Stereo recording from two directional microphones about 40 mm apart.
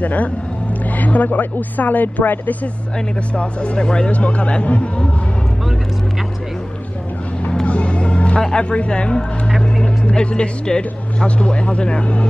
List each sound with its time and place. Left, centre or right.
0.0 s speech: left
3.3 s speech: left
7.6 s music: left
10.0 s speech: left